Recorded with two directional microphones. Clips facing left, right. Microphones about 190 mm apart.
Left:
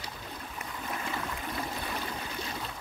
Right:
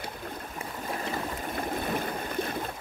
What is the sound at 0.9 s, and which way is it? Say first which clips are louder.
Trickle: right 3 dB; 40° right (ahead or behind).